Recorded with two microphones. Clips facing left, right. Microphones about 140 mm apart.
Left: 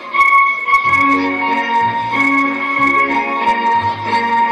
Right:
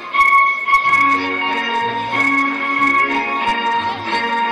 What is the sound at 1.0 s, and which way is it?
Music, 40° left (ahead or behind).